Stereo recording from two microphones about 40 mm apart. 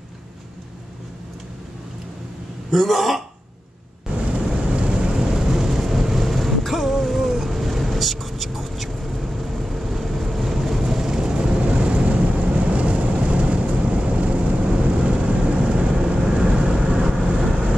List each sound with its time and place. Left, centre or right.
2.7 s speech: centre
4.3 s vehicle: right